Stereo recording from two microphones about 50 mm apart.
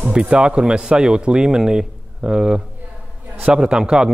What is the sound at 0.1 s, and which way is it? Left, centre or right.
Speech, centre.